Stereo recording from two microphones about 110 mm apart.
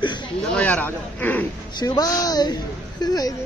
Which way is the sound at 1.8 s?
40° left (ahead or behind).